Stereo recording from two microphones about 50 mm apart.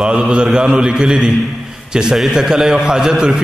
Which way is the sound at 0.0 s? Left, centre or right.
Centre.